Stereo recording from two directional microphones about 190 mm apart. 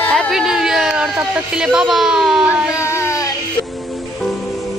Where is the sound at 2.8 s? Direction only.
15° left (ahead or behind).